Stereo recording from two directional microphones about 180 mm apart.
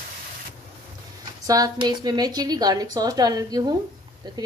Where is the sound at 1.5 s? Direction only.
20° right (ahead or behind).